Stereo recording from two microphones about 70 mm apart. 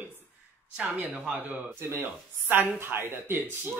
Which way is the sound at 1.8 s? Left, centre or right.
Right.